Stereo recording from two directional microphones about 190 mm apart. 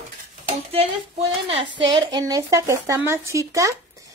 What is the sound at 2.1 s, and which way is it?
Speech, 15° right (ahead or behind).